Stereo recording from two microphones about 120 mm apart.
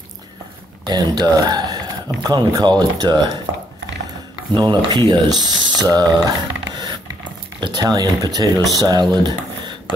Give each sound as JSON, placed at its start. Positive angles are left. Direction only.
{"t": 0.8, "sound": "speech", "side_deg": -35}
{"t": 4.6, "sound": "speech", "side_deg": -35}
{"t": 9.1, "sound": "a sound", "side_deg": -40}